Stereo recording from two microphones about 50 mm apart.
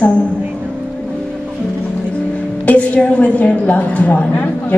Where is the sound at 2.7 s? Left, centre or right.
Left.